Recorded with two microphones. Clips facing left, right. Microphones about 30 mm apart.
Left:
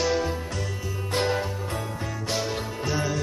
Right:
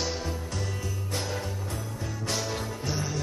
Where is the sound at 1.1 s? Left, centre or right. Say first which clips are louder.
Left 9 dB; left.